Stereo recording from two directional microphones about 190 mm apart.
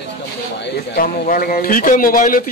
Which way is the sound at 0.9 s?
50° left (ahead or behind).